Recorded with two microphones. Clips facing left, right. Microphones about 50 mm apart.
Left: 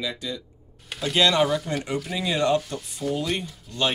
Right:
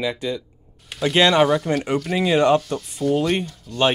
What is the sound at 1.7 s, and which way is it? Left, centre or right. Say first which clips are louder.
Speech: right 7 dB; right.